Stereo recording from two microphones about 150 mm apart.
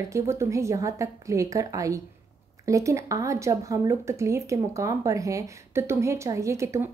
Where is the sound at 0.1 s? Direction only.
20° right (ahead or behind).